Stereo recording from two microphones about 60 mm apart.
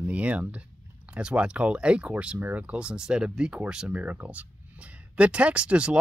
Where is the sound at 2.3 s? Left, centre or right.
Right; by 3.9 s centre.